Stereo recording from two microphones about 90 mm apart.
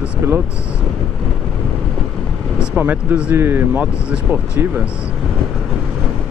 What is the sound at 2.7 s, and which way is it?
Speech, 15° right (ahead or behind).